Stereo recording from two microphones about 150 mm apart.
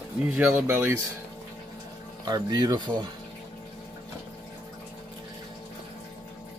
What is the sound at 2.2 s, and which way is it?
Speech, 25° right (ahead or behind).